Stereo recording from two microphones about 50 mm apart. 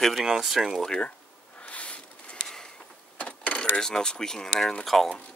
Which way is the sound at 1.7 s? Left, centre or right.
Left.